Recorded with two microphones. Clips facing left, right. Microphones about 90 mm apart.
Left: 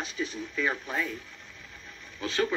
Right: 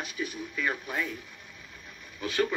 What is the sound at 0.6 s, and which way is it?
Speech, 20° left (ahead or behind).